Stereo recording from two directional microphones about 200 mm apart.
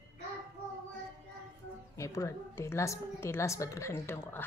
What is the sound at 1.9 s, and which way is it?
A woman's voice, 15° left (ahead or behind).